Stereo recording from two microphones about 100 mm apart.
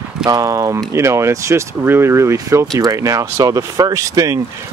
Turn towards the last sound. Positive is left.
turn(degrees=-35)  # may be behind; listen again after turning